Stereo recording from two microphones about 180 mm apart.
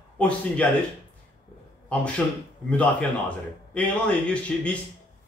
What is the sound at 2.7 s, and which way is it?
A man's voice, 5° left (ahead or behind).